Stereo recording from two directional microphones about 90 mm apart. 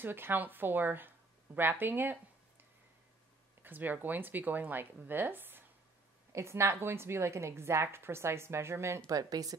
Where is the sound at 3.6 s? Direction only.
20° right (ahead or behind).